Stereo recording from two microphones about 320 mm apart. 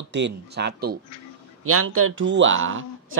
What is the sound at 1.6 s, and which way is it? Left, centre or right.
Speech, right.